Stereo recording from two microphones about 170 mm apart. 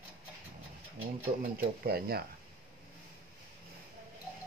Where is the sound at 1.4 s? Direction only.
65° right (ahead or behind).